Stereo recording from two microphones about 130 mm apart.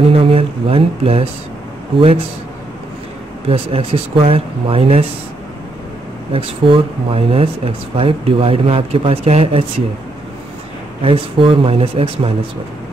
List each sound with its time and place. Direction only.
0.1 s speech: 45° right (ahead or behind)
3.4 s speech: 45° right (ahead or behind)
6.3 s speech: 45° right (ahead or behind)
11.0 s speech: 45° right (ahead or behind)